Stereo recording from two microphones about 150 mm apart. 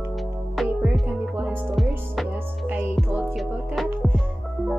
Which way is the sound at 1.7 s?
Centre (ahead or behind).